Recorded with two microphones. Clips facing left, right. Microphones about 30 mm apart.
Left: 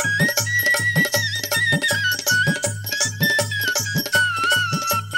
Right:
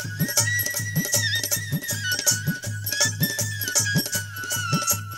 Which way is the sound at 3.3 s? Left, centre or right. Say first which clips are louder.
Left 9 dB; left.